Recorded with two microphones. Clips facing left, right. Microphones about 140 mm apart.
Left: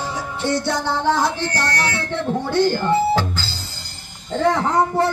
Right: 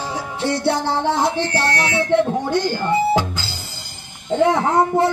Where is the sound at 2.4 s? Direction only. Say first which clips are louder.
Left 2 dB; 10° right (ahead or behind).